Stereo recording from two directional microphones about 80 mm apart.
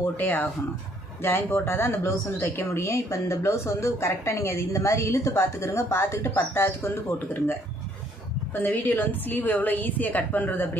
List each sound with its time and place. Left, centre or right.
0.0 s a woman's voice: left
8.5 s a woman's voice: left